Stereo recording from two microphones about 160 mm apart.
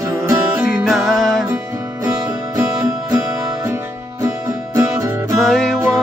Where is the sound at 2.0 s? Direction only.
20° right (ahead or behind).